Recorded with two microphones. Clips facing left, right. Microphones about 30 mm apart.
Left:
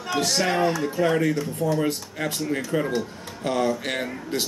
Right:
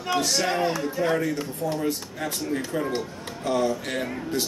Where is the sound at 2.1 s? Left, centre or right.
Left.